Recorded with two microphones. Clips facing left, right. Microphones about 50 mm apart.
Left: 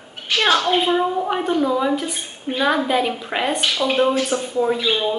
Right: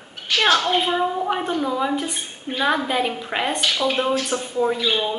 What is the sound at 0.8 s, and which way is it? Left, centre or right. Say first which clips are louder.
A woman's voice: left 2 dB; centre.